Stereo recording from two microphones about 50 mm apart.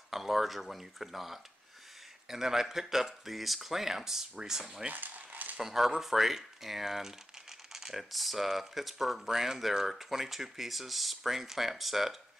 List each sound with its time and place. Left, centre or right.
0.1 s speech: centre
4.8 s a sound: right
5.6 s speech: centre